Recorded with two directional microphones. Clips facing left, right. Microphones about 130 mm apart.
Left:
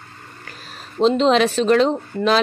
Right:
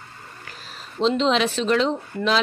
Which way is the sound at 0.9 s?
45° left (ahead or behind).